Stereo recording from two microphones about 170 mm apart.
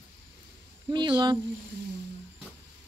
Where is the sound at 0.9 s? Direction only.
25° right (ahead or behind).